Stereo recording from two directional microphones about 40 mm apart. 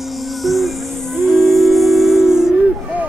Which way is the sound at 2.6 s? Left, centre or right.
Right.